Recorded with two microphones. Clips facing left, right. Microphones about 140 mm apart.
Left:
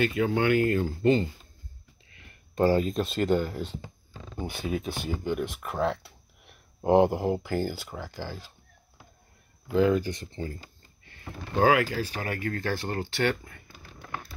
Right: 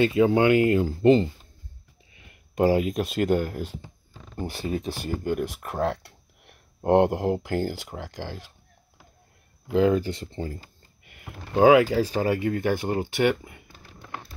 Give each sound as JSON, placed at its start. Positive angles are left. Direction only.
{"t": 0.0, "sound": "speech", "side_deg": -20}
{"t": 0.8, "sound": "speech", "side_deg": -30}
{"t": 2.1, "sound": "speech", "side_deg": -15}
{"t": 9.8, "sound": "speech", "side_deg": -25}
{"t": 11.1, "sound": "speech", "side_deg": -15}